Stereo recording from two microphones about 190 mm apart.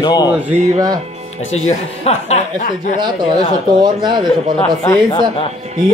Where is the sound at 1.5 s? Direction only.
35° left (ahead or behind).